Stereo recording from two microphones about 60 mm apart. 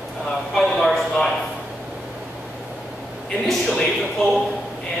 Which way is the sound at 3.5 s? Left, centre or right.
Centre.